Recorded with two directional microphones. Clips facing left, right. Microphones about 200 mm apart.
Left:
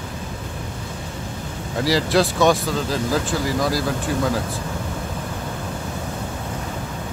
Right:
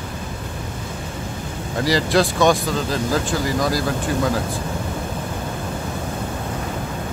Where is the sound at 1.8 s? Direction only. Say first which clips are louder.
Even; 5° left (ahead or behind).